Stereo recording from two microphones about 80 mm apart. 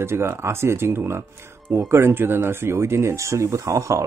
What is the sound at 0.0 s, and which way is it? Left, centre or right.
Speech, right.